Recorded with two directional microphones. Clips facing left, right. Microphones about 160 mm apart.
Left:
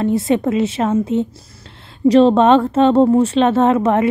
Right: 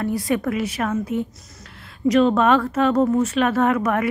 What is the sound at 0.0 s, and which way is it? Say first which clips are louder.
A woman's voice: left 6 dB; 25° left (ahead or behind).